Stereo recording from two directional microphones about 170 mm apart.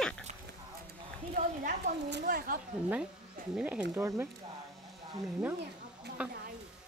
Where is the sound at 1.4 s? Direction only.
50° right (ahead or behind).